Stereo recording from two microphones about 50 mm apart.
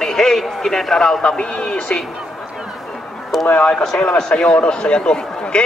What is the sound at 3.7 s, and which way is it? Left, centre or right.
Speech, centre.